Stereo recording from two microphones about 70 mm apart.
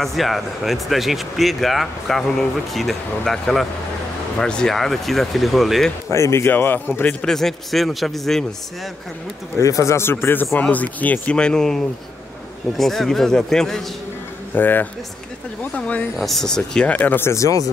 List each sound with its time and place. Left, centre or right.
0.0 s speech: centre
6.0 s speech: left
7.2 s speech: centre
9.6 s speech: left; by 13.8 s centre
14.5 s speech: left
16.2 s speech: centre
16.9 s speech: left
17.3 s speech: left